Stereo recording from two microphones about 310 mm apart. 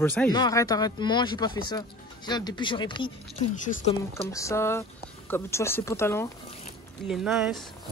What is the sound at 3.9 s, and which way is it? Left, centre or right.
Speech, centre.